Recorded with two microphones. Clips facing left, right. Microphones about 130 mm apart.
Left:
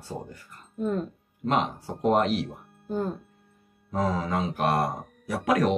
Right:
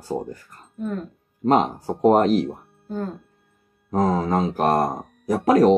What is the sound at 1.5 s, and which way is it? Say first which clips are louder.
Speech: right 7 dB; 40° right (ahead or behind).